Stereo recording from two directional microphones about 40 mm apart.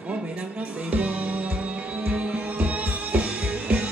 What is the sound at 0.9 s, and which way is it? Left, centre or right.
Music, right.